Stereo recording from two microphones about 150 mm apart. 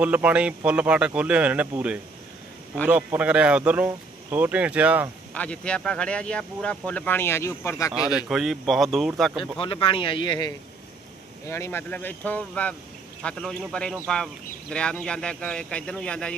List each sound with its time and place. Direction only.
0.0 s speech: 10° right (ahead or behind)
5.3 s speech: 10° left (ahead or behind)
8.3 s speech: centre (ahead or behind)
9.4 s speech: 35° left (ahead or behind)
11.4 s speech: 20° left (ahead or behind)